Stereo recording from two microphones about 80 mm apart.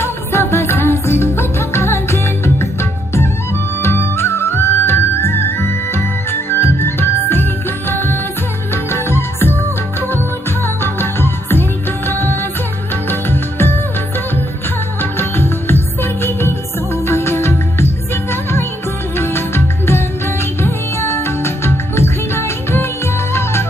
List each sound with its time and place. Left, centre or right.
0.0 s music: left
10.6 s music: left
15.0 s music: left